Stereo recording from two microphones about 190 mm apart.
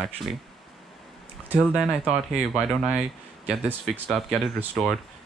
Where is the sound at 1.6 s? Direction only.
Centre (ahead or behind).